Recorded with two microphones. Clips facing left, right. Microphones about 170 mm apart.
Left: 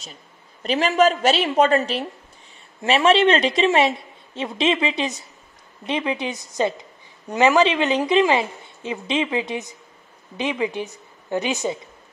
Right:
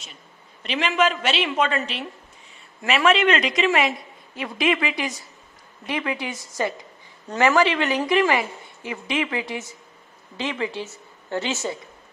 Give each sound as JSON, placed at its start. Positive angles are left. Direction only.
{"t": 0.6, "sound": "a woman's voice", "side_deg": 40}
{"t": 2.8, "sound": "a woman's voice", "side_deg": 30}